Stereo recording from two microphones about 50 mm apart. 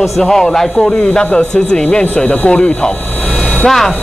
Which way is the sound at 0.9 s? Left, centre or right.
Left.